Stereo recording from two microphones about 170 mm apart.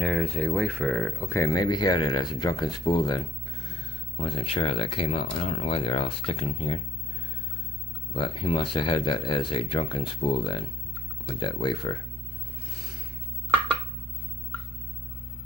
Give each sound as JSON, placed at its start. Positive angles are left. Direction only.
{"t": 0.0, "sound": "speech", "side_deg": 0}
{"t": 8.1, "sound": "speech", "side_deg": 30}